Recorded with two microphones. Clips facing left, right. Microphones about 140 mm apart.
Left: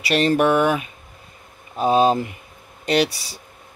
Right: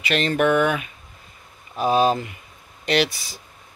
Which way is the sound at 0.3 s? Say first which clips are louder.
Left 1 dB; 35° left (ahead or behind).